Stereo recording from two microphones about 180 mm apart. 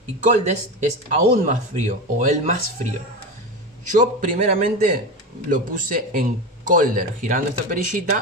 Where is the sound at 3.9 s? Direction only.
45° right (ahead or behind).